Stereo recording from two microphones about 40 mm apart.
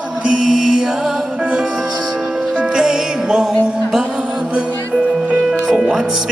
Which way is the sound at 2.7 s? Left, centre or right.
Centre.